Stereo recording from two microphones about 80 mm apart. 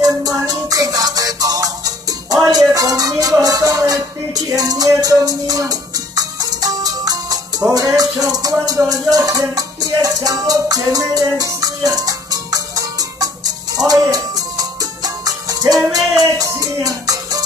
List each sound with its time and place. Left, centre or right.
0.0 s music: right
2.4 s a sound: right
7.7 s music: right